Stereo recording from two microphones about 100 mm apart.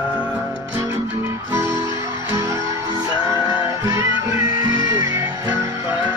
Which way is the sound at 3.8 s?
35° right (ahead or behind).